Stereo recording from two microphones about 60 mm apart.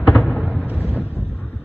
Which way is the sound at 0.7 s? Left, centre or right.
Right.